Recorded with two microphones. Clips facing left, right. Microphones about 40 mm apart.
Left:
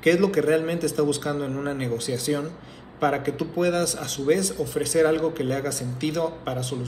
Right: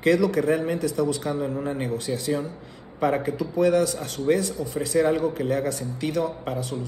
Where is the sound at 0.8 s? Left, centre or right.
Right.